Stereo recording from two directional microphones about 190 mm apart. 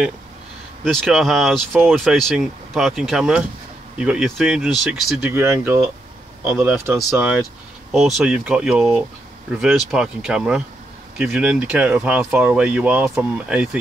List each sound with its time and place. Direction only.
0.8 s speech: centre (ahead or behind)